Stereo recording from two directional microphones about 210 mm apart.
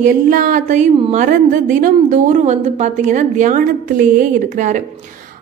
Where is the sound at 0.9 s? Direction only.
25° right (ahead or behind).